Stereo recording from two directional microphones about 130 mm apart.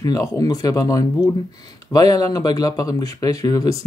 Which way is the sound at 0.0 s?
25° left (ahead or behind).